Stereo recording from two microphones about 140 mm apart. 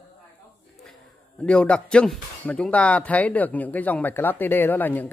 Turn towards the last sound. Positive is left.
turn(degrees=15)  # may be behind; listen again after turning